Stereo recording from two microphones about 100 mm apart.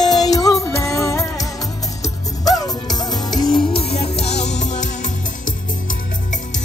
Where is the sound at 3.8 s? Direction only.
90° left.